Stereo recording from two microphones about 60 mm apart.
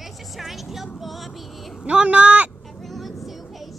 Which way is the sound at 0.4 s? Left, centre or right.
Centre.